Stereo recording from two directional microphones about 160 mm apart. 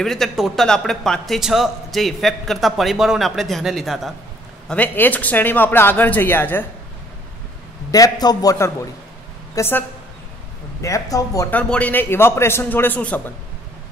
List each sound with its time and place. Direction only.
0.0 s a man's voice: centre (ahead or behind)
7.9 s a man's voice: 25° left (ahead or behind)
11.5 s speech: 10° left (ahead or behind)